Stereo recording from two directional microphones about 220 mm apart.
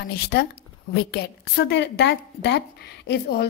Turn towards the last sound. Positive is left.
turn(degrees=50)  # may be behind; listen again after turning